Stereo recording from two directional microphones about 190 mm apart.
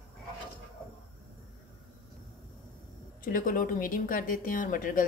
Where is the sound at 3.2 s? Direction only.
45° left (ahead or behind).